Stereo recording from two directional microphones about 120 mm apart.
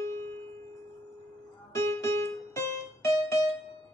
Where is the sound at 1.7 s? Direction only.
25° left (ahead or behind).